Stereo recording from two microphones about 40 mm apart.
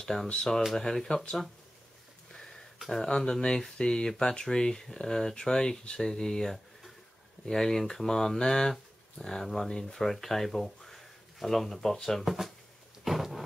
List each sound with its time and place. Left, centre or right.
0.0 s speech: centre
2.9 s speech: centre
12.3 s speech: centre
13.0 s thunder: centre